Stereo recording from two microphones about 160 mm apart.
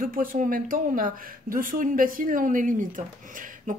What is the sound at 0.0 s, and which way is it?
A woman's voice, 60° right (ahead or behind).